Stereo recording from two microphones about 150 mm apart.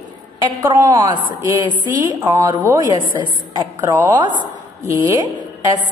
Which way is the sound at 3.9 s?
15° right (ahead or behind).